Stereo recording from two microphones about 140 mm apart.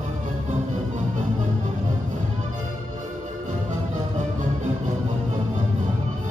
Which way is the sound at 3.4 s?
60° right (ahead or behind).